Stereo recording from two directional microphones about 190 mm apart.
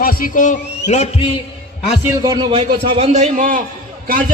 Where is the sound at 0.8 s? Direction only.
35° left (ahead or behind).